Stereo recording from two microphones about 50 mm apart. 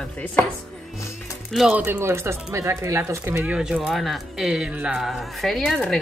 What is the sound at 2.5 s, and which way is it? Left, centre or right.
Speech, right.